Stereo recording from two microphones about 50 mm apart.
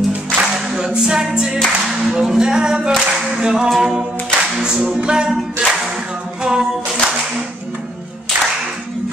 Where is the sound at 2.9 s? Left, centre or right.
Centre.